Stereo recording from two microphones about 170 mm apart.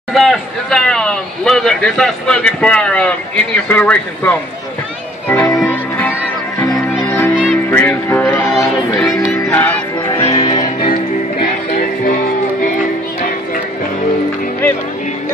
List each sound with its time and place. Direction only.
0.1 s a sound: centre (ahead or behind)
3.6 s speech: 10° left (ahead or behind)
5.3 s music: 10° left (ahead or behind)
10.0 s music: 35° left (ahead or behind)
10.8 s music: 50° left (ahead or behind)